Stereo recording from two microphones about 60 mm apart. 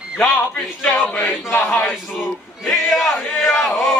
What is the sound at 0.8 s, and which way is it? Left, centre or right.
Speech, centre.